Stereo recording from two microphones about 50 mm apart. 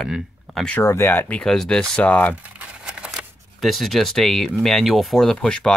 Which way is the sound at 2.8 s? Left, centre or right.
Centre.